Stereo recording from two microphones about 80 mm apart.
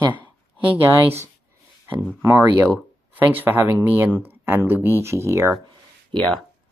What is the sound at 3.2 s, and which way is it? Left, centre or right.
Speech, right.